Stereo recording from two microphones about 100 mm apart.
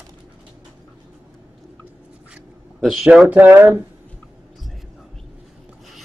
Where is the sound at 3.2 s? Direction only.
15° right (ahead or behind).